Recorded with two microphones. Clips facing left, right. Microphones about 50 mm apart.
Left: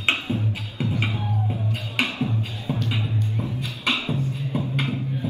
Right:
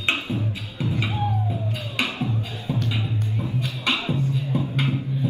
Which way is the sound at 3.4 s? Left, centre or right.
Right.